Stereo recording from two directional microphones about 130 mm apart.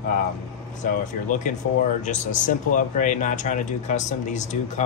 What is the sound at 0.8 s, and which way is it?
Speech, 80° left.